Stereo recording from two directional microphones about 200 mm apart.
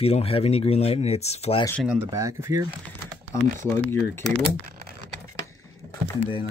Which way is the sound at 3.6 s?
10° left (ahead or behind).